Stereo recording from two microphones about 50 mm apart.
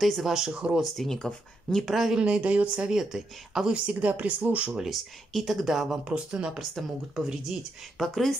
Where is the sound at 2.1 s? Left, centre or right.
Right.